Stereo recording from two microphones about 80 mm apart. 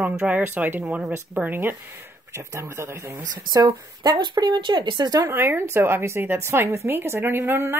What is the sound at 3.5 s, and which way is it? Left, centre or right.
Speech, right.